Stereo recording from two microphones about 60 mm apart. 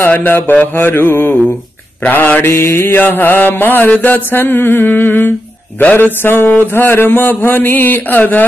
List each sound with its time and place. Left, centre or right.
0.0 s mantra: left
2.4 s mantra: left